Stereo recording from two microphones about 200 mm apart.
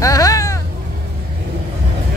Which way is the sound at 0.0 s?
15° left (ahead or behind).